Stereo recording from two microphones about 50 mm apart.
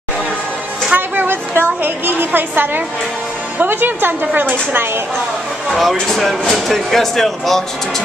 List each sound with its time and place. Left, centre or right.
0.9 s a sound: right
1.8 s a woman's voice: right
5.7 s speech: centre